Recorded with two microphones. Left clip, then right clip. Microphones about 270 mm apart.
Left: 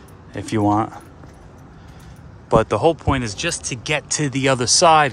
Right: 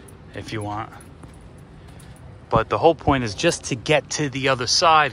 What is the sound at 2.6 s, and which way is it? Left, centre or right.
Speech, centre.